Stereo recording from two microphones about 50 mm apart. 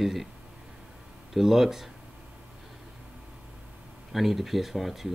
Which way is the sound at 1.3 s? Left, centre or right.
Centre.